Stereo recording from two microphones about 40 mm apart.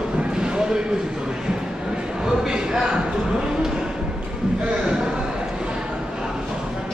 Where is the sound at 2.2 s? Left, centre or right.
Centre.